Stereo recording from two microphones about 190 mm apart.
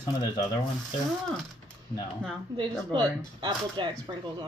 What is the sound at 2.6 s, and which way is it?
Speech, 25° right (ahead or behind).